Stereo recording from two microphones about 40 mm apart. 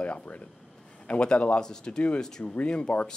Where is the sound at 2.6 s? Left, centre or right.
Left.